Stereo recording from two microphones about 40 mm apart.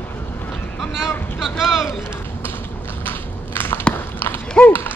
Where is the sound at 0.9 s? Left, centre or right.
Centre.